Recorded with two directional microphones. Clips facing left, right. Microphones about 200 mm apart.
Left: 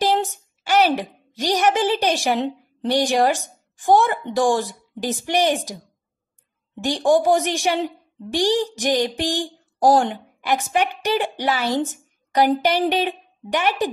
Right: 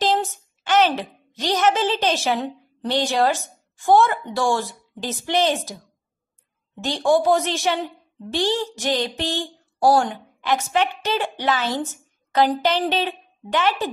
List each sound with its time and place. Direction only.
0.0 s a woman's voice: 15° left (ahead or behind)